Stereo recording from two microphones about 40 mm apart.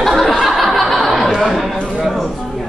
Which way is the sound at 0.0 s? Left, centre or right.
Centre.